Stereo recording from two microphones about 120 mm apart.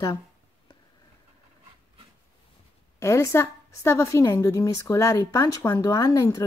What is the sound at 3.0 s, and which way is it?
A woman's voice, 25° left (ahead or behind).